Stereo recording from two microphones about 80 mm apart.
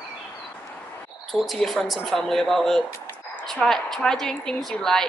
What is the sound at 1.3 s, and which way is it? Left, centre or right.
A woman's voice, centre.